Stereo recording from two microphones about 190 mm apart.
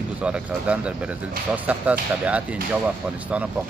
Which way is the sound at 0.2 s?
5° right (ahead or behind).